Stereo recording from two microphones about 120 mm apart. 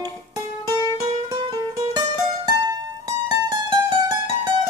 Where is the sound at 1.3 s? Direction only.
30° right (ahead or behind).